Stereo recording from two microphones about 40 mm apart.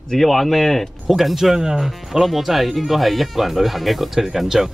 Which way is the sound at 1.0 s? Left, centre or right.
Centre.